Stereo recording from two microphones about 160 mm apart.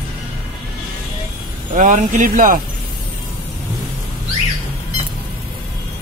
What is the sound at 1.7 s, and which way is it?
Speech, 55° right (ahead or behind).